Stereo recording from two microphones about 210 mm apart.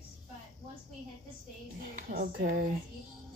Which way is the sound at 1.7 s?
45° right (ahead or behind).